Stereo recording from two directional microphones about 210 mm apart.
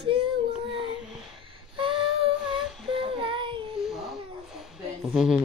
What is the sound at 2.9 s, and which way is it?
Child singing, 25° right (ahead or behind).